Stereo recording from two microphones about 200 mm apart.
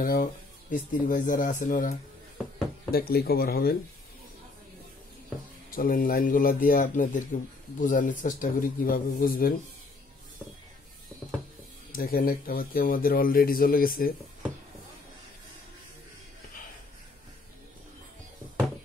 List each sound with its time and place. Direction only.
0.0 s speech: 45° left (ahead or behind)
5.8 s speech: 45° left (ahead or behind)
11.9 s speech: 45° left (ahead or behind)